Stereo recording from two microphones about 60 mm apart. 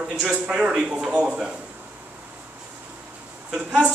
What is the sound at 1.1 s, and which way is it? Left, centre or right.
Speech, right.